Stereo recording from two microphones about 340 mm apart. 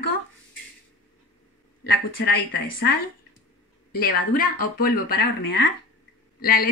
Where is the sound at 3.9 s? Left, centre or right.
Left.